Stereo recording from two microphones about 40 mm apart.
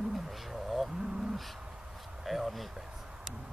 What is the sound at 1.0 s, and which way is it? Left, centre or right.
Speech, centre.